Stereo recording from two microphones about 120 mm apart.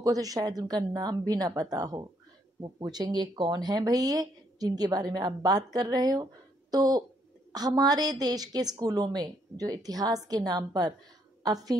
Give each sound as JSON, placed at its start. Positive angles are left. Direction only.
{"t": 0.0, "sound": "speech", "side_deg": -30}